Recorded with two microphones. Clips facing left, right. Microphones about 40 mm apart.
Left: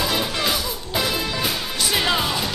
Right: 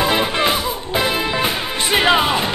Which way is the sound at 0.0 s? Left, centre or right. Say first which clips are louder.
Right 6 dB; right.